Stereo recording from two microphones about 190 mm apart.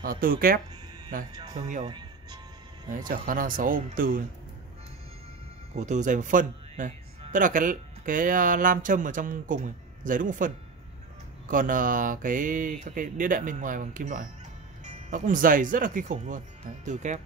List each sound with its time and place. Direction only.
0.0 s speech: 50° right (ahead or behind)
1.3 s speech: 20° right (ahead or behind)
2.9 s speech: 45° right (ahead or behind)
5.8 s speech: 40° right (ahead or behind)